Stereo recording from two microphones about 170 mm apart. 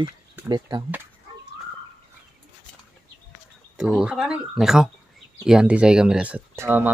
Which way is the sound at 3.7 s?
5° right (ahead or behind).